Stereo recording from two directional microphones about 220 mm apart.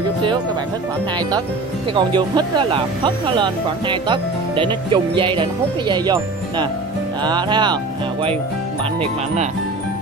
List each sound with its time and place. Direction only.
2.0 s speech: 20° right (ahead or behind)